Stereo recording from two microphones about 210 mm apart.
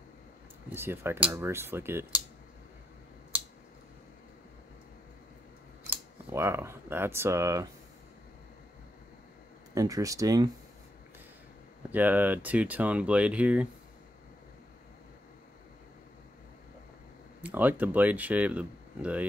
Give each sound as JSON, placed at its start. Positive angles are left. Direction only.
{"t": 0.7, "sound": "speech", "side_deg": -10}
{"t": 5.9, "sound": "speech", "side_deg": -10}
{"t": 9.8, "sound": "speech", "side_deg": -15}
{"t": 11.9, "sound": "speech", "side_deg": -10}
{"t": 17.4, "sound": "speech", "side_deg": -10}